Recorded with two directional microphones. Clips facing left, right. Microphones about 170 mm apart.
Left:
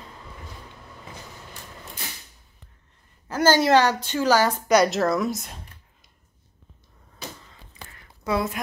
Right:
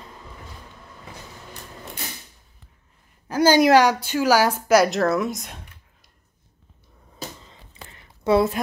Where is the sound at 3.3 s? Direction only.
15° right (ahead or behind).